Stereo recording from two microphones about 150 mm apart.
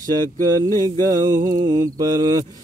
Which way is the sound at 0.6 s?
25° right (ahead or behind).